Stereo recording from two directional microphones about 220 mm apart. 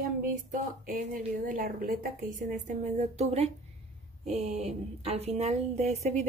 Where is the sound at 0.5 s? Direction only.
40° right (ahead or behind).